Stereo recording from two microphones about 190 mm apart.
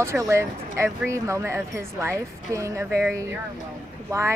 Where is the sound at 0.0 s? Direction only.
15° right (ahead or behind).